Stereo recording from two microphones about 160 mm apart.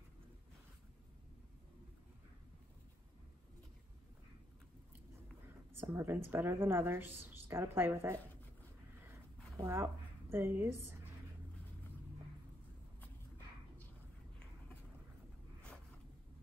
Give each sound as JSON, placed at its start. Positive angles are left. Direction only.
{"t": 5.8, "sound": "a woman's voice", "side_deg": -15}
{"t": 9.0, "sound": "a sound", "side_deg": -15}
{"t": 10.3, "sound": "a woman's voice", "side_deg": -15}